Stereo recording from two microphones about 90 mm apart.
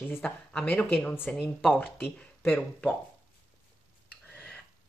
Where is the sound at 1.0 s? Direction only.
20° left (ahead or behind).